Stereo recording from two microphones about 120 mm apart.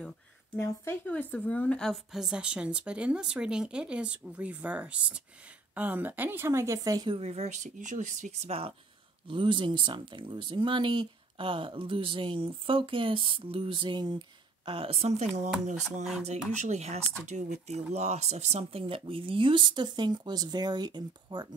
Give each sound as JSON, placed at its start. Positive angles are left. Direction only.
{"t": 0.6, "sound": "a woman's voice", "side_deg": 15}
{"t": 7.1, "sound": "speech", "side_deg": -60}
{"t": 9.3, "sound": "speech", "side_deg": -45}
{"t": 16.0, "sound": "speech", "side_deg": -5}
{"t": 16.6, "sound": "speech", "side_deg": -70}